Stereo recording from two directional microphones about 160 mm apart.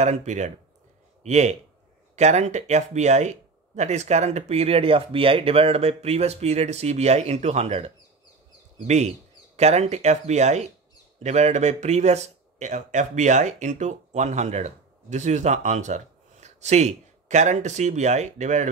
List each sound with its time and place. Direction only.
0.0 s speech: 45° right (ahead or behind)